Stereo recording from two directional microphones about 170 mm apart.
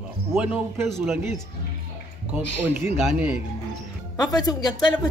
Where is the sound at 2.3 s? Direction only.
10° right (ahead or behind).